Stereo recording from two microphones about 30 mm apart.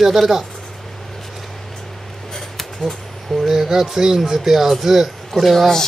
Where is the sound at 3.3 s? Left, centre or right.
Centre.